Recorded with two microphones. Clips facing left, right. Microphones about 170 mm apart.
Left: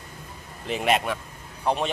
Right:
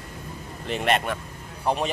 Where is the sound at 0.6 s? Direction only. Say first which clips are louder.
Even; centre (ahead or behind).